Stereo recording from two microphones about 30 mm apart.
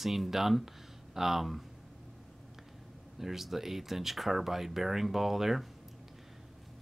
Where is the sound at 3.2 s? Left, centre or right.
Centre.